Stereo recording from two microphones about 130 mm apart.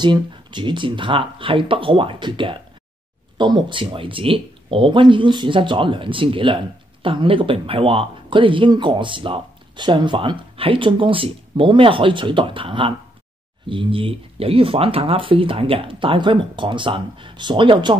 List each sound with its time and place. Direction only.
0.0 s speech: 35° right (ahead or behind)